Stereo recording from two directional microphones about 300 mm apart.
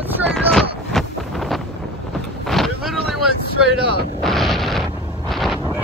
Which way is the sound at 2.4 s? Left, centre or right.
Centre.